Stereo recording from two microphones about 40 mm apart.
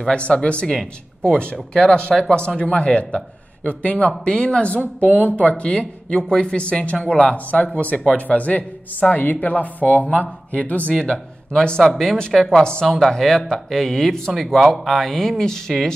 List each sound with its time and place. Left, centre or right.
0.1 s speech: left
2.6 s speech: left
5.2 s speech: left
5.7 s speech: left
11.0 s speech: left
12.0 s speech: centre
13.1 s speech: centre